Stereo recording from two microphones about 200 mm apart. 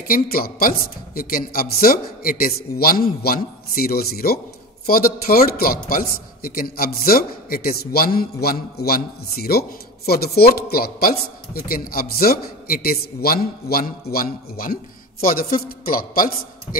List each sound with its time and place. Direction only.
0.1 s a man's voice: 45° left (ahead or behind)